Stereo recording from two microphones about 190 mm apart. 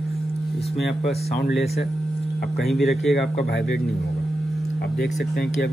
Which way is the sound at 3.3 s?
65° left (ahead or behind).